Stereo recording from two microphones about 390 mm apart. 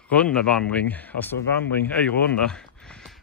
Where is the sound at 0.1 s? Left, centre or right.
Centre.